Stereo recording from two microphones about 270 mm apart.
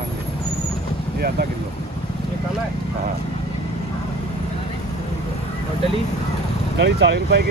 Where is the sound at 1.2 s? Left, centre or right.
Right.